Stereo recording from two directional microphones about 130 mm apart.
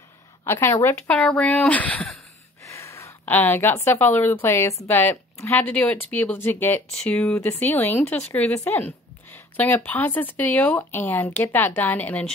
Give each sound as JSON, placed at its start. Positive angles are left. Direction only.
{"t": 0.5, "sound": "a woman's voice", "side_deg": 20}
{"t": 2.7, "sound": "a woman's voice", "side_deg": 25}